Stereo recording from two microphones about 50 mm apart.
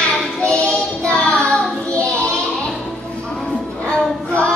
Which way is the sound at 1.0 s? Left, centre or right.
Centre.